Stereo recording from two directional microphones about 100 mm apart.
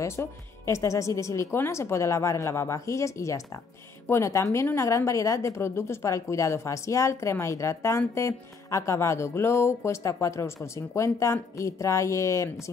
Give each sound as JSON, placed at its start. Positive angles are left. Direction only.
{"t": 0.0, "sound": "speech", "side_deg": 30}